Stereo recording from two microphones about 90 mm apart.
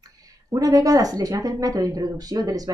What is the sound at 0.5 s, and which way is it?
Speech, 40° right (ahead or behind).